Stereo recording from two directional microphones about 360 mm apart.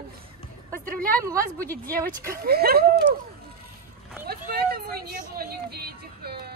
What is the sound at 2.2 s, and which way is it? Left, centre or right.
Speech, right.